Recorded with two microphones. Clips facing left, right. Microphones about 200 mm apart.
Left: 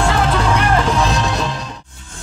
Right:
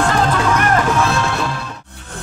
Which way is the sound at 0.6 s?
15° left (ahead or behind).